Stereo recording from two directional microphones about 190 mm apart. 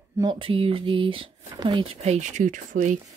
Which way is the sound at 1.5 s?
20° right (ahead or behind).